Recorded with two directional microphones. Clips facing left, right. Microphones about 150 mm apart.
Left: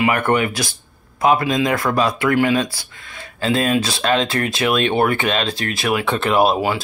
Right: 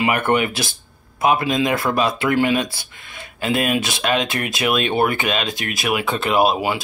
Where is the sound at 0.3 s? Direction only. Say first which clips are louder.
Left 1 dB; 25° right (ahead or behind).